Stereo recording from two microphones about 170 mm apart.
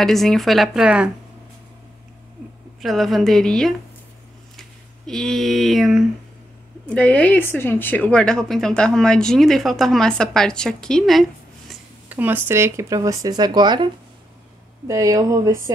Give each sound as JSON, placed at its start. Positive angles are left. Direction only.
{"t": 0.0, "sound": "speech", "side_deg": 0}
{"t": 2.8, "sound": "speech", "side_deg": 0}
{"t": 12.2, "sound": "speech", "side_deg": -10}
{"t": 14.9, "sound": "speech", "side_deg": -20}